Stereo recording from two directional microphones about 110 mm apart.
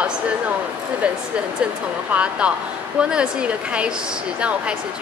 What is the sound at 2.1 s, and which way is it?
Speech, 10° right (ahead or behind).